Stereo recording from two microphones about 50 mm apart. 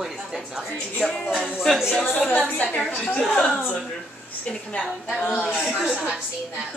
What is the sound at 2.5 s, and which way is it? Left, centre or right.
A woman's voice, left.